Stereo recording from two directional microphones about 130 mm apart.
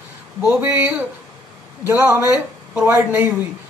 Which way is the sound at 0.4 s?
15° right (ahead or behind).